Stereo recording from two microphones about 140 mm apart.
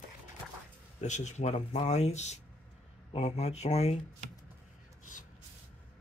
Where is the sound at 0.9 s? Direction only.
55° left (ahead or behind).